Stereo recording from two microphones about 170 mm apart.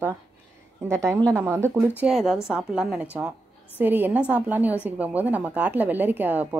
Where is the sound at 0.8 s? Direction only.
15° right (ahead or behind).